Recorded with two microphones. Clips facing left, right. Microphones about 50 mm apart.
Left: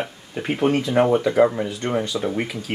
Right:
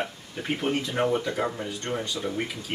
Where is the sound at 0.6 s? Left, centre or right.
Left.